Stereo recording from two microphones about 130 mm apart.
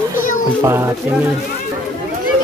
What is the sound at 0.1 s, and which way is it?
Children playing, 90° left.